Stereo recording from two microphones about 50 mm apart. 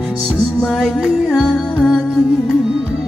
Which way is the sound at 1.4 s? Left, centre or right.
Centre.